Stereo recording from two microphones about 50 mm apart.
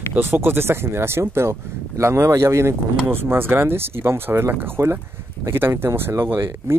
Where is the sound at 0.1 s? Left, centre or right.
Right.